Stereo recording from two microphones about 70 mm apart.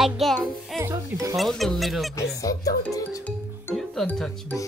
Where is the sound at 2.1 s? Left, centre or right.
Left.